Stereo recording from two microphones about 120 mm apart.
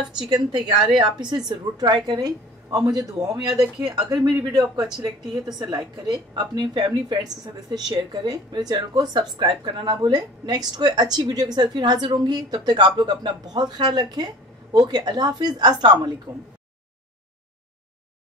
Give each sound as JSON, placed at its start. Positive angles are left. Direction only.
{"t": 0.2, "sound": "a woman's voice", "side_deg": -40}